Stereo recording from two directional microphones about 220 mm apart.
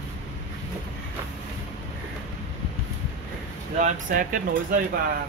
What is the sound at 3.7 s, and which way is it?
Speech, 40° right (ahead or behind).